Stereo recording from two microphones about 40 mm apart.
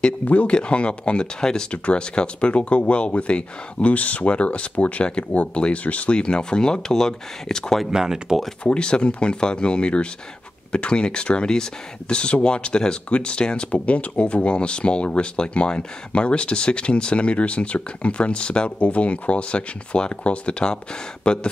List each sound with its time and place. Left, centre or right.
0.3 s speech: left
7.9 s speech: centre
8.6 s speech: left